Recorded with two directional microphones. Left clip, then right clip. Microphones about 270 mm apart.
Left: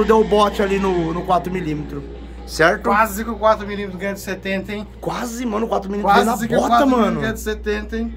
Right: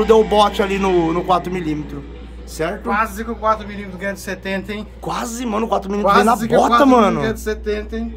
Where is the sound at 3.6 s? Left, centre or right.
Centre.